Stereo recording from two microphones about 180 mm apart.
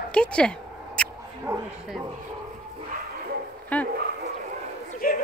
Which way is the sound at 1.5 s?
15° right (ahead or behind).